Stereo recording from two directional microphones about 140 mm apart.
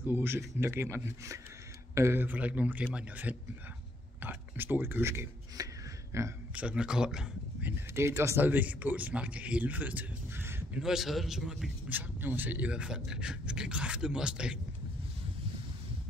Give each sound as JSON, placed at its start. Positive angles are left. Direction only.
{"t": 0.0, "sound": "a man's voice", "side_deg": -15}
{"t": 6.5, "sound": "speech", "side_deg": -5}
{"t": 7.9, "sound": "speech", "side_deg": -20}
{"t": 10.8, "sound": "a man's voice", "side_deg": -5}